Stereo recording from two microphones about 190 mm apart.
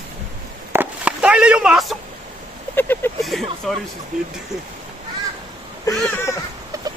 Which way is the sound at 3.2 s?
Centre (ahead or behind).